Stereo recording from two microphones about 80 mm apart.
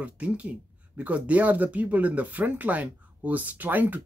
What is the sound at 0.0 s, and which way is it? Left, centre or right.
Speech, centre.